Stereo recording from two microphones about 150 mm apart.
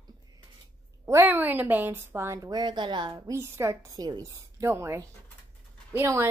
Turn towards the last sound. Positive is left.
turn(degrees=-15)  # may be behind; listen again after turning